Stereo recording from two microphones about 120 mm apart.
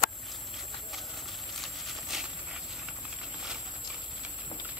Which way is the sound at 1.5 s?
Centre (ahead or behind).